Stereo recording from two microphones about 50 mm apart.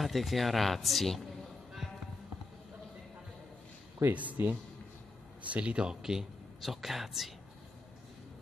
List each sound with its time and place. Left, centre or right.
0.0 s speech: centre
4.1 s speech: right
5.5 s speech: right; by 7.3 s centre